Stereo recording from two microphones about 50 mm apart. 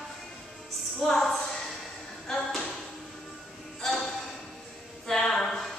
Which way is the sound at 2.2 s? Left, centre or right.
Centre.